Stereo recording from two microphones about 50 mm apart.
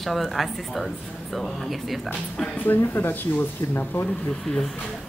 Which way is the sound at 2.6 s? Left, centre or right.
Left.